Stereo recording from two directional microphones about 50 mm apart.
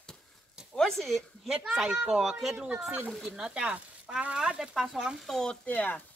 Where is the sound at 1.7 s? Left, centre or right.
Centre.